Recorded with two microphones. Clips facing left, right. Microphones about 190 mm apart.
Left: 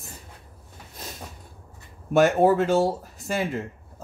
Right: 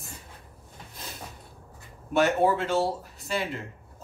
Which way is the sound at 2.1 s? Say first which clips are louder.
Left 5 dB; 45° left (ahead or behind).